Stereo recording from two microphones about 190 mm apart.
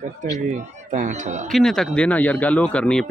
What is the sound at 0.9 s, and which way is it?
Speech, 40° right (ahead or behind).